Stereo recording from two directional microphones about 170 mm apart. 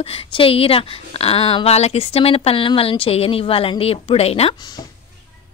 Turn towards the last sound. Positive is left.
turn(degrees=35)  # may be behind; listen again after turning